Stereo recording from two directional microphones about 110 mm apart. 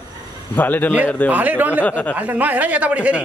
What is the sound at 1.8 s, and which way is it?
Speech, 15° left (ahead or behind).